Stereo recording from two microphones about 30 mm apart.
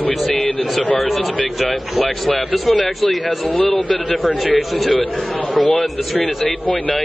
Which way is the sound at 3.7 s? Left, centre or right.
Left.